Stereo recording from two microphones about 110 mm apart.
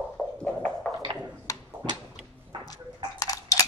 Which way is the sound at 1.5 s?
30° left (ahead or behind).